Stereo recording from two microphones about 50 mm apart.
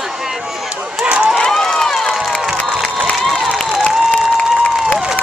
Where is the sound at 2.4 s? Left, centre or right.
Centre.